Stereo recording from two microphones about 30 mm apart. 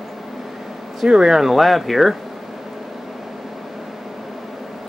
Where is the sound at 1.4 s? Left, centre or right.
Centre.